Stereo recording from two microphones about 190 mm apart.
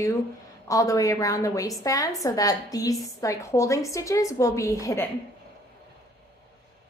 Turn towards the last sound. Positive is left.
turn(degrees=15)  # may be behind; listen again after turning